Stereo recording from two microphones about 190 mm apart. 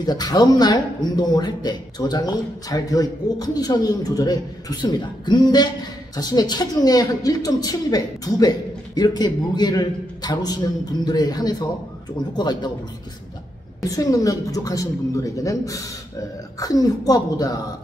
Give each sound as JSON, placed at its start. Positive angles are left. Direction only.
{"t": 0.0, "sound": "speech", "side_deg": 20}
{"t": 13.8, "sound": "a woman's voice", "side_deg": 20}